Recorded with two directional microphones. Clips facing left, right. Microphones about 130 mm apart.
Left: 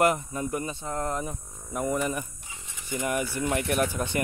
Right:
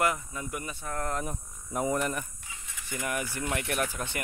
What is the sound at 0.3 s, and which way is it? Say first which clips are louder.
Speech: left 6 dB; 35° left (ahead or behind).